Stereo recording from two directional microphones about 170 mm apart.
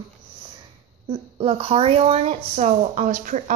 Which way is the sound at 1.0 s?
35° right (ahead or behind).